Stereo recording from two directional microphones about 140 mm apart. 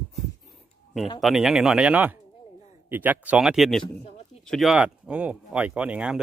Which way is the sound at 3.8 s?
45° left (ahead or behind).